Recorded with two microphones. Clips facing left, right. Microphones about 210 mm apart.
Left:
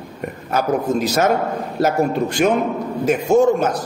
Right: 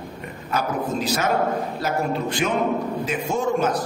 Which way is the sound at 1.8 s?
45° left (ahead or behind).